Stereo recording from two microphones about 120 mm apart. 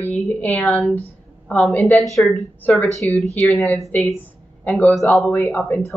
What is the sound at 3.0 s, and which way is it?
Speech, 30° right (ahead or behind).